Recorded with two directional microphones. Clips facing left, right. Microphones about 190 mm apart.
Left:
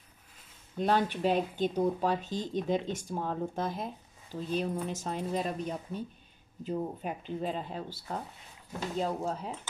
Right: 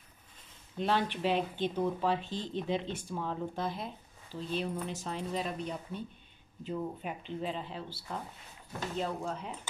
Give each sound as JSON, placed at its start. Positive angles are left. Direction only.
{"t": 0.7, "sound": "speech", "side_deg": 45}